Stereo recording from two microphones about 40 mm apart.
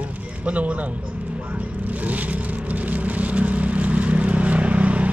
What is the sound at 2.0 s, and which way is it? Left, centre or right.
Vehicle, right.